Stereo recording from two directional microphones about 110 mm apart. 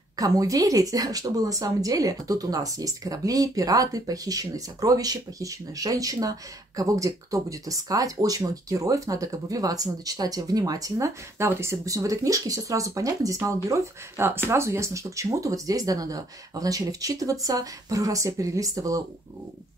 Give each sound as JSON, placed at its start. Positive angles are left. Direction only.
{"t": 0.2, "sound": "speech", "side_deg": -35}